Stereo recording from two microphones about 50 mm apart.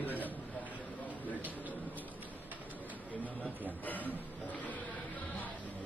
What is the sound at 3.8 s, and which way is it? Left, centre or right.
Speech, left.